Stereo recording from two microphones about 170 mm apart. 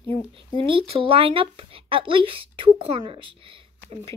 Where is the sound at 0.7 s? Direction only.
35° right (ahead or behind).